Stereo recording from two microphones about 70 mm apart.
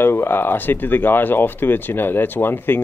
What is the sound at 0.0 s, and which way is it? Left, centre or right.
Speech, left.